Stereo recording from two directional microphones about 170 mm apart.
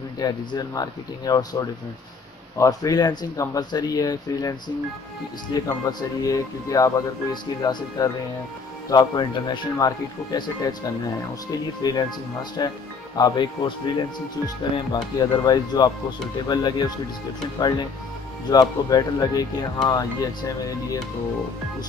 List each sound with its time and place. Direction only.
0.2 s speech: 25° left (ahead or behind)
8.0 s speech: 20° left (ahead or behind)
11.8 s speech: 25° left (ahead or behind)